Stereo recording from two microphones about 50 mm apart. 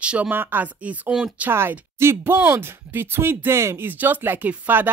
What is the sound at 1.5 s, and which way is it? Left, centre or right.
Speech, right.